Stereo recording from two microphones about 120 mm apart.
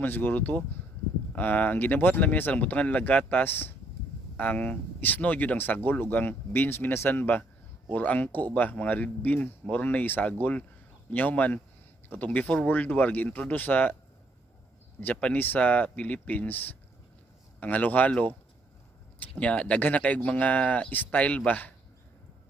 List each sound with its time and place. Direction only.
0.0 s speech: 15° left (ahead or behind)
15.0 s speech: 10° left (ahead or behind)